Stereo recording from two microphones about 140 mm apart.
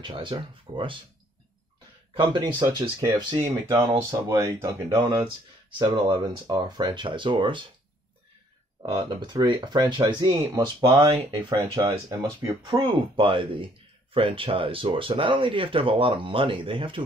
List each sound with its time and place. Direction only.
0.0 s speech: 35° right (ahead or behind)
2.1 s speech: 35° right (ahead or behind)
2.6 s speech: 20° right (ahead or behind)
4.9 s speech: 35° right (ahead or behind)
8.8 s speech: 35° right (ahead or behind)